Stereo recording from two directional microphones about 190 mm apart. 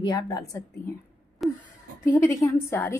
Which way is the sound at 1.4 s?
Centre (ahead or behind).